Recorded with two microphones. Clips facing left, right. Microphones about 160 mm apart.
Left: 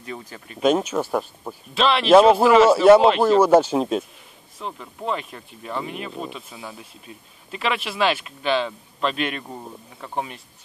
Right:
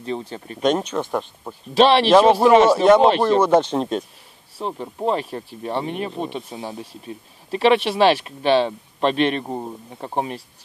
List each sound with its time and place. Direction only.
0.0 s speech: 30° right (ahead or behind)
0.6 s speech: 5° left (ahead or behind)
1.7 s speech: 35° right (ahead or behind)
2.0 s speech: centre (ahead or behind)
2.3 s speech: 35° right (ahead or behind)
2.7 s speech: 5° left (ahead or behind)
4.6 s speech: 35° right (ahead or behind)